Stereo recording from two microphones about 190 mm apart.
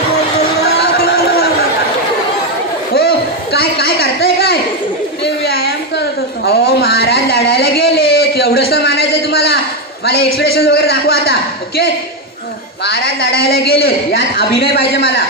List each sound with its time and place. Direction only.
0.6 s chatter: 55° left (ahead or behind)
3.5 s a sound: 55° left (ahead or behind)
10.0 s a man's voice: 55° left (ahead or behind)